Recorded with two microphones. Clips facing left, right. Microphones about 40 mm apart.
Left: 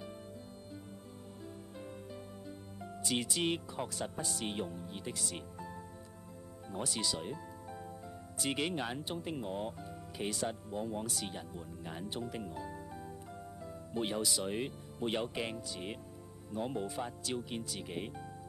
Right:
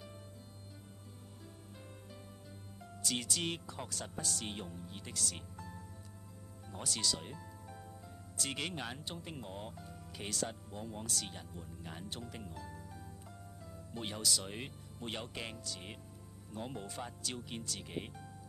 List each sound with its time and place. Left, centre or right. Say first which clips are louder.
2.8 s speech: left 3 dB; centre
7.2 s music: left 6 dB; centre
8.4 s speech: left 5 dB; centre